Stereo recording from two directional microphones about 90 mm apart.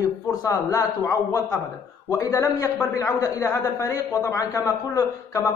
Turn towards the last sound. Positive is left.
turn(degrees=40)  # may be behind; listen again after turning